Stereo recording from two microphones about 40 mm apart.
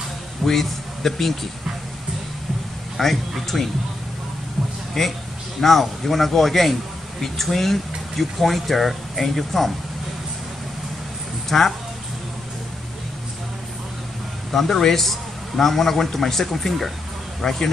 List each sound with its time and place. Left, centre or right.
0.5 s a man's voice: centre
3.0 s a man's voice: centre
5.0 s a man's voice: centre
11.4 s speech: centre
14.5 s a man's voice: centre